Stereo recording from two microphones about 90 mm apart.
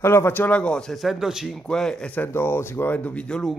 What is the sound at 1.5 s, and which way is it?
Speech, 5° left (ahead or behind).